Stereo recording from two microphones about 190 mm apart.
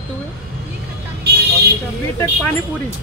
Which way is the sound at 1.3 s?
60° right (ahead or behind).